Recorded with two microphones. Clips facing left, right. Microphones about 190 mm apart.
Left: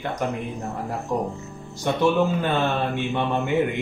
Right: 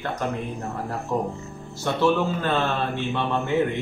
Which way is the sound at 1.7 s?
15° left (ahead or behind).